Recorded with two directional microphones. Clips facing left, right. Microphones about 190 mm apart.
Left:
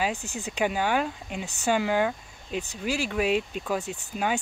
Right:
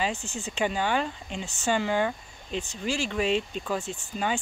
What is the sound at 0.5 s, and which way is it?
Speech, 10° left (ahead or behind).